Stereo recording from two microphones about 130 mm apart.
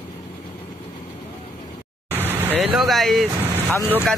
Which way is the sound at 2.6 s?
5° right (ahead or behind).